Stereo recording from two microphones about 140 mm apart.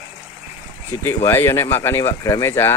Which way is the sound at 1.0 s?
15° left (ahead or behind).